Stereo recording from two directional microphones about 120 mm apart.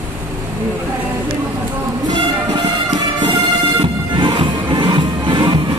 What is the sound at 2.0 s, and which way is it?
Music, 35° right (ahead or behind).